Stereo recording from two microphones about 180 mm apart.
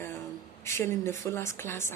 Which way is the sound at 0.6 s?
15° left (ahead or behind).